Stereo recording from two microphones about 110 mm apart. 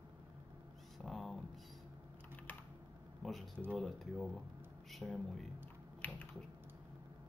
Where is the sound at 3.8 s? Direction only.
Centre (ahead or behind).